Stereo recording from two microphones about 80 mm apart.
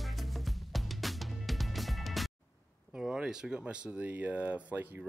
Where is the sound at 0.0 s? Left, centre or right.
Centre.